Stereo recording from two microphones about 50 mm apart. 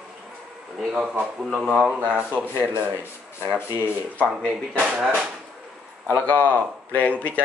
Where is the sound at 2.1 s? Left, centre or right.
Right.